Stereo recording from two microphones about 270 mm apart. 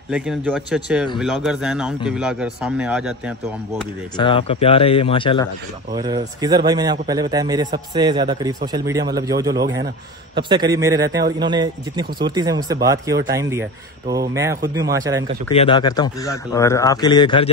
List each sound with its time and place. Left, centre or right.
0.1 s a man's voice: centre
4.2 s a man's voice: centre
5.9 s a man's voice: centre
15.5 s a man's voice: centre